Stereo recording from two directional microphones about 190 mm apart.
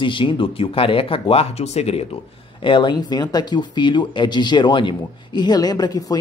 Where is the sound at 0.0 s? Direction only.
25° left (ahead or behind).